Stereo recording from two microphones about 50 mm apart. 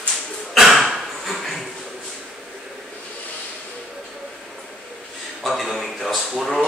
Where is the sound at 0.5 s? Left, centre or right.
Centre.